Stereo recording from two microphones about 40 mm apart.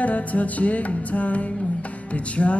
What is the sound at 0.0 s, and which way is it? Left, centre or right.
Music, left.